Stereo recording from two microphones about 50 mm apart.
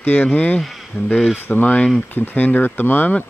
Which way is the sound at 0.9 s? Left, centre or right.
Left.